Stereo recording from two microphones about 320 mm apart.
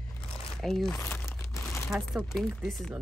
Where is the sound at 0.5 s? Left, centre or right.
Centre.